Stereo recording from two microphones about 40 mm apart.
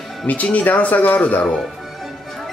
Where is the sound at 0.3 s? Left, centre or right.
Left.